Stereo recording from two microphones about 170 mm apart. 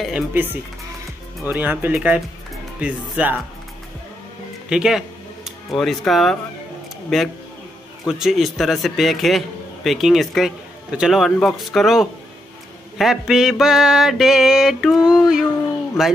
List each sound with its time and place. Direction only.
0.0 s speech: 10° right (ahead or behind)
4.6 s speech: 5° right (ahead or behind)
7.1 s mantra: centre (ahead or behind)